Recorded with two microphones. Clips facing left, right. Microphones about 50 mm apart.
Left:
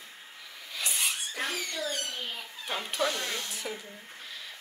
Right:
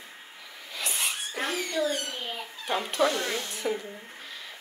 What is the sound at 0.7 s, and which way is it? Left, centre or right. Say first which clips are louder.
Speech: right 1 dB; centre.